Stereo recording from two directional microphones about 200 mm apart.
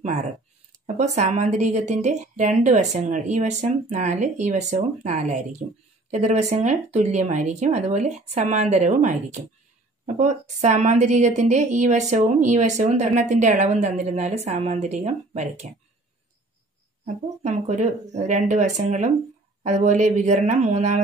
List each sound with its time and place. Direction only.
0.0 s a woman's voice: 35° right (ahead or behind)
17.0 s a woman's voice: 35° right (ahead or behind)